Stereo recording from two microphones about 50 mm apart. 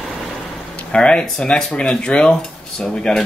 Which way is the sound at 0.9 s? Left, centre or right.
Centre.